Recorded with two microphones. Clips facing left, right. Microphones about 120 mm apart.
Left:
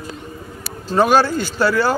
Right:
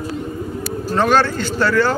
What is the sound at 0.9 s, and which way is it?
Speech, 10° left (ahead or behind).